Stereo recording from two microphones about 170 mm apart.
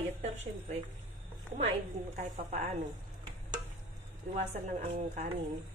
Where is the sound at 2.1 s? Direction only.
45° right (ahead or behind).